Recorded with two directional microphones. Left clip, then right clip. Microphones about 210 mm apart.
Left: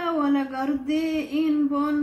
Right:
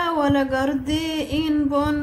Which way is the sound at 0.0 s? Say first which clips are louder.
Right 4 dB; 45° right (ahead or behind).